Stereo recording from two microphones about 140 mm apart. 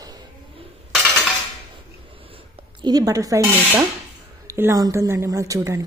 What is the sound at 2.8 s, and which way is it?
Speech, 25° right (ahead or behind).